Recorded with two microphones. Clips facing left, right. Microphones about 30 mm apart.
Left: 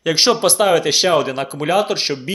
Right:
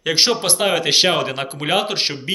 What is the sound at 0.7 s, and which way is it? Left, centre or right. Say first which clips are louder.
Speech: left 2 dB; right.